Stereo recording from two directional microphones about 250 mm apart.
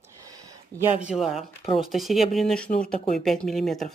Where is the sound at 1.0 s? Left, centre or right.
Centre.